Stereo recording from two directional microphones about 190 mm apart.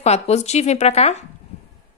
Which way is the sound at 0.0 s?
35° left (ahead or behind).